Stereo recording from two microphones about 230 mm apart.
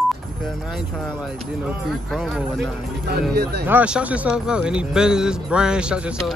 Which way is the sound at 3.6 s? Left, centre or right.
Centre.